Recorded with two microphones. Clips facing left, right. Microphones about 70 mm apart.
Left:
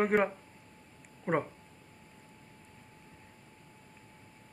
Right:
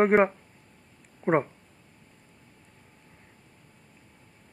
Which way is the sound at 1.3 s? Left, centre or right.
Right.